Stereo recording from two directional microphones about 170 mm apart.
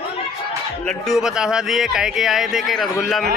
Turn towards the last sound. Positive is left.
turn(degrees=0)  # may be behind; listen again after turning